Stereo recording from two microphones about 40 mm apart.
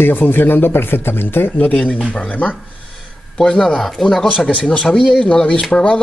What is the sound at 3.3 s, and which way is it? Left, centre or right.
Speech, centre.